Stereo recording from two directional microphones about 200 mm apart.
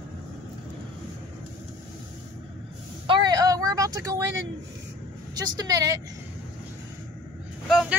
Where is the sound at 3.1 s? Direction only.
20° right (ahead or behind).